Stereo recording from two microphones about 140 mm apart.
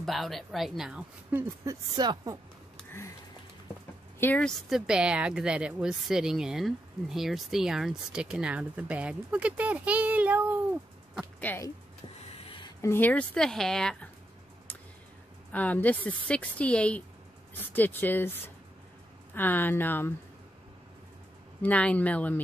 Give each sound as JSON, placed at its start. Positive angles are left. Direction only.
{"t": 0.0, "sound": "speech", "side_deg": 0}
{"t": 1.6, "sound": "speech", "side_deg": -25}
{"t": 4.2, "sound": "speech", "side_deg": 10}
{"t": 11.5, "sound": "speech", "side_deg": 10}
{"t": 12.4, "sound": "a sound", "side_deg": 35}
{"t": 12.8, "sound": "speech", "side_deg": 15}
{"t": 15.5, "sound": "speech", "side_deg": 10}
{"t": 19.3, "sound": "speech", "side_deg": 15}
{"t": 21.6, "sound": "speech", "side_deg": 10}